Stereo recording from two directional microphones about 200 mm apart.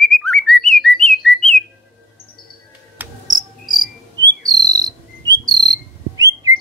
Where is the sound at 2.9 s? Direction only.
10° right (ahead or behind).